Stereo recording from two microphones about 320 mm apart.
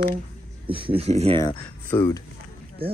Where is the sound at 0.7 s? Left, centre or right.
Centre.